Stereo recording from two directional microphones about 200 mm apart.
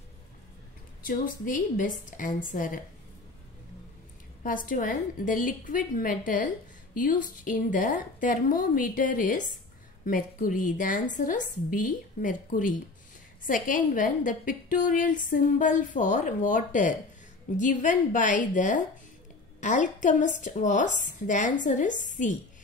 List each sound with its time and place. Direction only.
1.0 s a woman's voice: 45° left (ahead or behind)
4.4 s a woman's voice: 45° left (ahead or behind)